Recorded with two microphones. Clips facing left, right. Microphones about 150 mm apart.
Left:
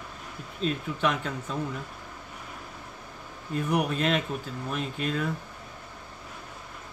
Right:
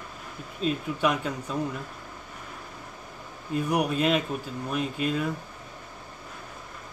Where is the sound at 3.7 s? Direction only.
10° right (ahead or behind).